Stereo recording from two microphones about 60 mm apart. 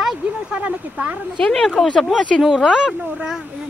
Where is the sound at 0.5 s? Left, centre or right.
Right.